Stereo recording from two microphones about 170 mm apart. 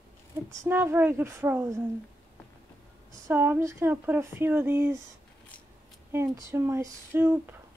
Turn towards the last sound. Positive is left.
turn(degrees=-15)  # may be behind; listen again after turning